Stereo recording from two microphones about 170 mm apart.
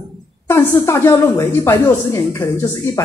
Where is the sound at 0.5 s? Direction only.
15° left (ahead or behind).